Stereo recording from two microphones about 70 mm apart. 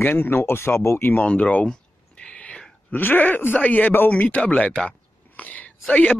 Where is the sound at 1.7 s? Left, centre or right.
Centre.